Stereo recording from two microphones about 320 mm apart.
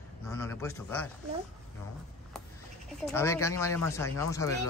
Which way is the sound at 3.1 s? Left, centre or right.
Centre.